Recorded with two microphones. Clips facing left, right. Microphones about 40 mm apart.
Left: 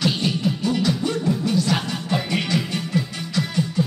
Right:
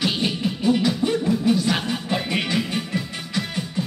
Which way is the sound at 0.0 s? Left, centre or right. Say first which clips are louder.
Left 1 dB; centre.